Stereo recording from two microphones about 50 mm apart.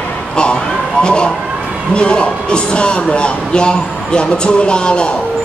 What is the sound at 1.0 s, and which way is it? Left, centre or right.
Speech, centre.